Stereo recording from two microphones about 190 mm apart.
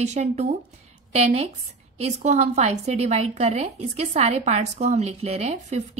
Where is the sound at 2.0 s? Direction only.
35° right (ahead or behind).